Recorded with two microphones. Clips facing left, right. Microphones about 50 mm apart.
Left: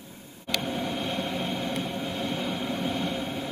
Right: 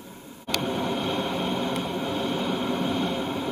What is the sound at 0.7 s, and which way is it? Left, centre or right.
Vehicle, right.